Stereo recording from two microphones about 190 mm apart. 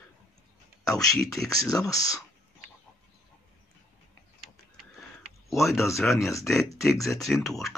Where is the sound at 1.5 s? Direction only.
20° left (ahead or behind).